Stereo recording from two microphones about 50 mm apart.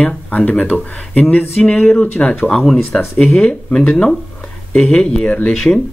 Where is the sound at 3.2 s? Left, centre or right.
Centre.